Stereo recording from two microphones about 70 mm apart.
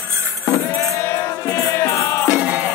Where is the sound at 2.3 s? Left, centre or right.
Centre.